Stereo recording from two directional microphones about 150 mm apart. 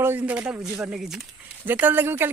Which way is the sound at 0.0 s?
10° right (ahead or behind).